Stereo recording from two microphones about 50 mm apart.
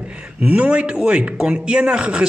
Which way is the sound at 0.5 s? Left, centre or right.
Right.